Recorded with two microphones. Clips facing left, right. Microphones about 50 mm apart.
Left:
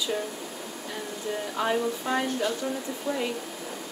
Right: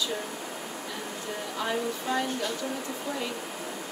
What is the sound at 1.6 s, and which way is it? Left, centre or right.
Speech, centre.